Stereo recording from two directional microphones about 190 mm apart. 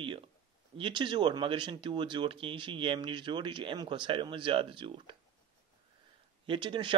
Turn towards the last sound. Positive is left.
turn(degrees=-25)  # may be behind; listen again after turning